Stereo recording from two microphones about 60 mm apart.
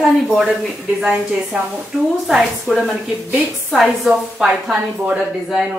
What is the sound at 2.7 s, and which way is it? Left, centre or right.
Speech, right.